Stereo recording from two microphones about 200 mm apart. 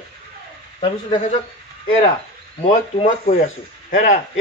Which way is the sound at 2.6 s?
35° left (ahead or behind).